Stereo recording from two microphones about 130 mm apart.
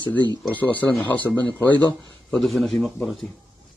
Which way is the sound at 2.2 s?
Centre (ahead or behind).